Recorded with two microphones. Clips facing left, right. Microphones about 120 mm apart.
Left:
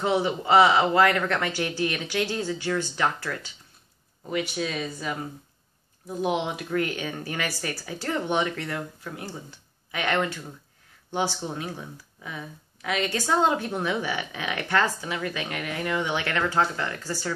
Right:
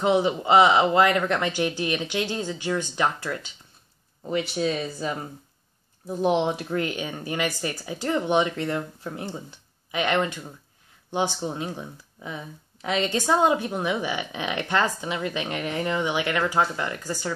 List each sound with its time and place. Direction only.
0.0 s speech: 20° right (ahead or behind)
4.3 s speech: 30° right (ahead or behind)
16.1 s speech: 15° right (ahead or behind)